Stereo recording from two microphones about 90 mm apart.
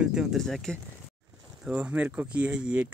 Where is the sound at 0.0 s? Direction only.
10° right (ahead or behind).